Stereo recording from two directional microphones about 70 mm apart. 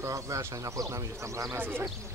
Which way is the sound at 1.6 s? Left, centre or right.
Right.